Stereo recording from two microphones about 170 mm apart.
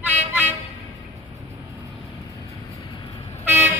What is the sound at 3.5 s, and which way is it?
Toot, 15° right (ahead or behind).